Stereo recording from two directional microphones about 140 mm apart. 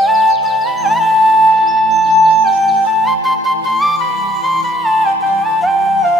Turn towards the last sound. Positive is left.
turn(degrees=0)  # may be behind; listen again after turning